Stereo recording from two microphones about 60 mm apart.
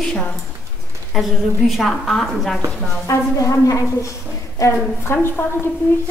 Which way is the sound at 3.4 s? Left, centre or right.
Left.